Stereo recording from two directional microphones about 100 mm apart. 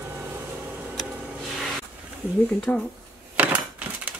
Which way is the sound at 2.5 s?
10° left (ahead or behind).